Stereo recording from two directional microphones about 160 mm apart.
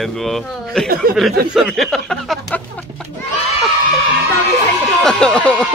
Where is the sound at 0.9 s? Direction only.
65° right (ahead or behind).